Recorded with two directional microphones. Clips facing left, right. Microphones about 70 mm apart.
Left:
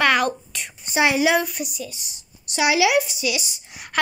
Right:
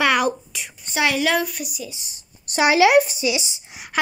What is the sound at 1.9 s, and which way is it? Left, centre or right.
Speech, right.